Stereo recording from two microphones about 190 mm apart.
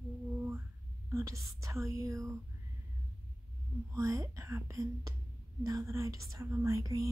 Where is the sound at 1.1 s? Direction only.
15° right (ahead or behind).